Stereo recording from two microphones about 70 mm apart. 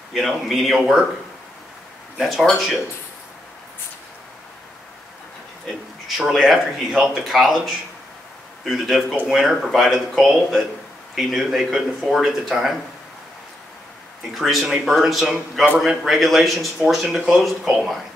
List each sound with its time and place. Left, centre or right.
0.1 s speech: centre
2.1 s speech: centre
6.0 s speech: centre
14.3 s speech: centre
15.3 s a man's voice: centre